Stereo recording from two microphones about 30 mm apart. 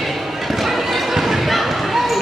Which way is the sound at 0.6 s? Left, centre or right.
Centre.